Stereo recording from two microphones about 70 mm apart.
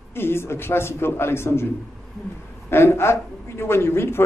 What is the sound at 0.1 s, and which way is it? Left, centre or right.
Speech, left.